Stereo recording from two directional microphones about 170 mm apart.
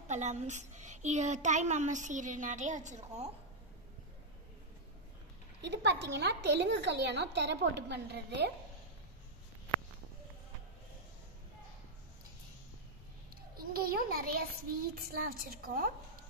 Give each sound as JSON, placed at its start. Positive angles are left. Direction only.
{"t": 0.1, "sound": "a child's voice", "side_deg": -45}
{"t": 5.6, "sound": "a woman's voice", "side_deg": -90}
{"t": 13.6, "sound": "a child's voice", "side_deg": -60}